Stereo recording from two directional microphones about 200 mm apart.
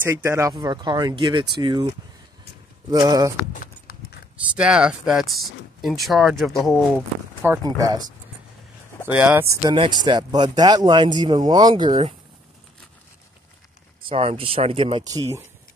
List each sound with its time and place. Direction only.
0.0 s speech: 10° right (ahead or behind)
3.5 s clip-clop: 45° left (ahead or behind)
4.6 s speech: 5° right (ahead or behind)
7.4 s speech: 15° right (ahead or behind)
9.0 s speech: 5° right (ahead or behind); by 12.1 s 25° right (ahead or behind)
14.0 s speech: 30° right (ahead or behind)